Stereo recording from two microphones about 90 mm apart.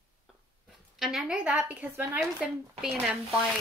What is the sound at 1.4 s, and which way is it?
Speech, 15° right (ahead or behind).